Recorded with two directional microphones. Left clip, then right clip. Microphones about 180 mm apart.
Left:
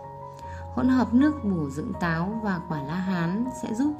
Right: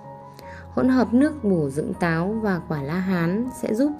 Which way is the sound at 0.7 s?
25° right (ahead or behind).